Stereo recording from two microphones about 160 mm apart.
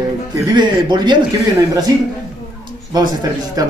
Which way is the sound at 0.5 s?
30° right (ahead or behind).